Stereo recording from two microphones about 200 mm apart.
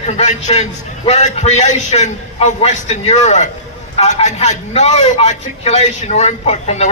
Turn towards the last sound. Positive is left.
turn(degrees=35)  # may be behind; listen again after turning